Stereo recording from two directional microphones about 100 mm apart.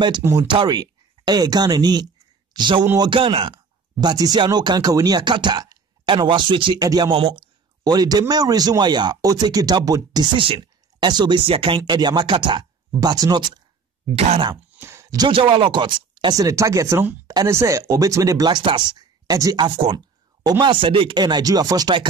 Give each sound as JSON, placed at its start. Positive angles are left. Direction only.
{"t": 0.2, "sound": "speech", "side_deg": -30}
{"t": 0.7, "sound": "speech", "side_deg": -45}
{"t": 3.0, "sound": "speech", "side_deg": -60}
{"t": 7.1, "sound": "speech", "side_deg": -65}
{"t": 7.8, "sound": "speech", "side_deg": -40}
{"t": 14.5, "sound": "a sound", "side_deg": -25}
{"t": 15.1, "sound": "speech", "side_deg": -55}
{"t": 20.6, "sound": "speech", "side_deg": -60}